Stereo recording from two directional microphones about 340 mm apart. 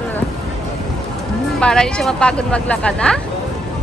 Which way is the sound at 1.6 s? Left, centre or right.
Centre.